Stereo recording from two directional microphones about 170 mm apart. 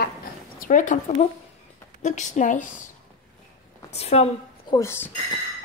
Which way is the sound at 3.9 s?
40° left (ahead or behind).